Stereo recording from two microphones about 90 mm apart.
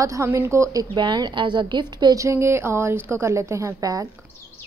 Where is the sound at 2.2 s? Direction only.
30° right (ahead or behind).